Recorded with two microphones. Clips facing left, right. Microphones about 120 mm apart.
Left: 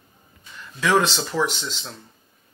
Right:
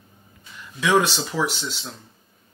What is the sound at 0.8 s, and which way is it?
Speech, 10° right (ahead or behind).